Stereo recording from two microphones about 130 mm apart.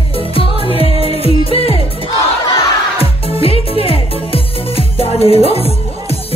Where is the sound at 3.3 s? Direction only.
45° left (ahead or behind).